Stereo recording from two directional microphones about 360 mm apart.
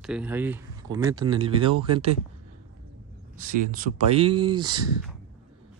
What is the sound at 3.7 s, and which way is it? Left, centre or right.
Speech, centre.